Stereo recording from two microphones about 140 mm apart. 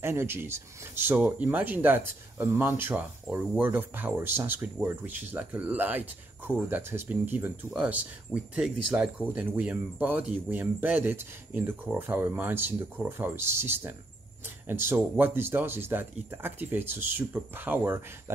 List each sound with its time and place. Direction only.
0.0 s speech: 15° right (ahead or behind)